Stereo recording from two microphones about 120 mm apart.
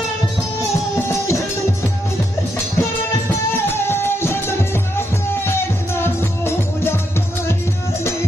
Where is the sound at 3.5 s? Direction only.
20° left (ahead or behind).